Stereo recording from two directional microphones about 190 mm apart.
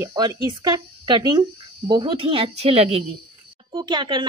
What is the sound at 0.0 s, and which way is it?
A woman's voice, 20° right (ahead or behind).